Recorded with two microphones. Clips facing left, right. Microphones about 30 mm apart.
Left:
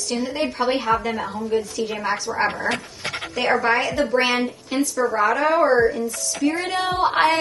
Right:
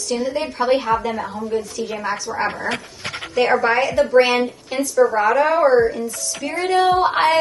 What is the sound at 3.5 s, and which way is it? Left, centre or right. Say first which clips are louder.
A woman's voice: right 1 dB; centre.